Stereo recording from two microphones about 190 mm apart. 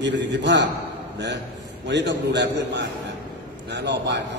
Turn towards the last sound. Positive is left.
turn(degrees=-65)  # may be behind; listen again after turning